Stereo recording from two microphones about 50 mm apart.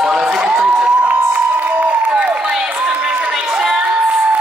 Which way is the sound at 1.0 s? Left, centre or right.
Right.